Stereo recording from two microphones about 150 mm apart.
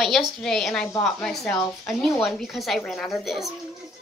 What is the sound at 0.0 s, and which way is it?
Speech, centre (ahead or behind).